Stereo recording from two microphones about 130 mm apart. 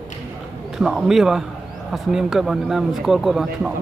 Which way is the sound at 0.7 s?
5° right (ahead or behind).